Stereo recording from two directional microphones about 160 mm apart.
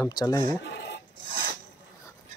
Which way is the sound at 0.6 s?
90° left.